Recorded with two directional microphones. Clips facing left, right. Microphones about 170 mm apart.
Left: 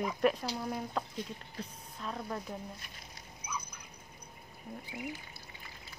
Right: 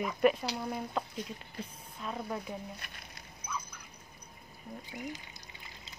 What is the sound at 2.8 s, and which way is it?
Speech, 70° right (ahead or behind).